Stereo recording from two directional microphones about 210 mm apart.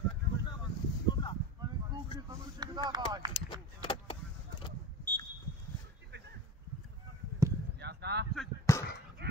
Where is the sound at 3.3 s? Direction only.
25° left (ahead or behind).